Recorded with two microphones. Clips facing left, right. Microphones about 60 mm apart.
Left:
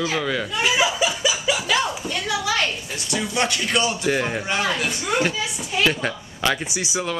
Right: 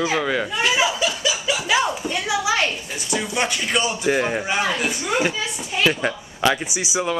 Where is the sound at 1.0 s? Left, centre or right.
Centre.